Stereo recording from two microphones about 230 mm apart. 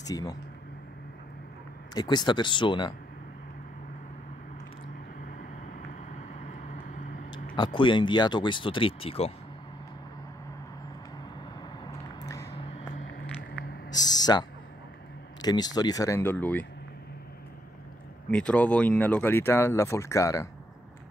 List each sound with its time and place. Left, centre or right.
0.0 s speech: centre
2.0 s speech: centre
6.1 s vehicle: left
7.5 s speech: left
11.8 s a sound: centre
12.5 s a sound: left
13.9 s a sound: centre
15.4 s speech: centre
18.3 s speech: centre